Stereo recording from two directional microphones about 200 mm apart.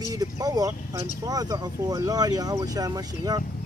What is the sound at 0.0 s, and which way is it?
Speech, 15° right (ahead or behind).